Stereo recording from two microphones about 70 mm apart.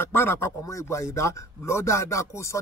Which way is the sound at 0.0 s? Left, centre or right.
Left.